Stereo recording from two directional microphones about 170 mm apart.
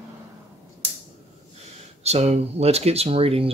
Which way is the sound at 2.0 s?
40° right (ahead or behind).